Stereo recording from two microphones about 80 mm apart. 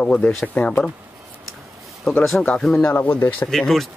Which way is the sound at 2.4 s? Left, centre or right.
Centre.